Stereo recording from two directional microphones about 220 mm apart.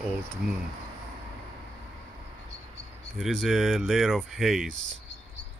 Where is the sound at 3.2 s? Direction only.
Centre (ahead or behind).